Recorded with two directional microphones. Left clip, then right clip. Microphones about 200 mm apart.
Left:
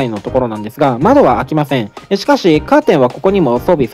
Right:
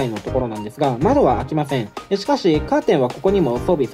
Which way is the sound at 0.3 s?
Centre (ahead or behind).